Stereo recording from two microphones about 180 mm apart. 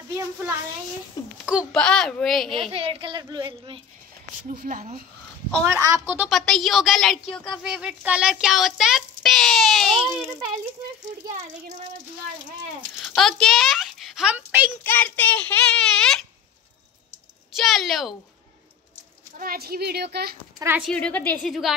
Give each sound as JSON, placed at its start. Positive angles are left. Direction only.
{"t": 0.1, "sound": "a sound", "side_deg": -15}
{"t": 1.4, "sound": "a sound", "side_deg": -5}
{"t": 1.8, "sound": "a child's voice", "side_deg": 5}
{"t": 2.7, "sound": "a sound", "side_deg": -30}
{"t": 4.5, "sound": "speech", "side_deg": -50}
{"t": 5.7, "sound": "a woman's voice", "side_deg": -20}
{"t": 5.9, "sound": "speech", "side_deg": -5}
{"t": 13.0, "sound": "a woman's voice", "side_deg": 0}
{"t": 14.8, "sound": "a child's voice", "side_deg": 10}
{"t": 17.6, "sound": "speech", "side_deg": 0}
{"t": 19.3, "sound": "a woman's voice", "side_deg": -55}
{"t": 20.5, "sound": "speech", "side_deg": -15}
{"t": 20.8, "sound": "speech", "side_deg": 5}